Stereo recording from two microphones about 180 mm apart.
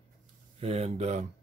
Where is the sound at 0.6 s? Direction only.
35° right (ahead or behind).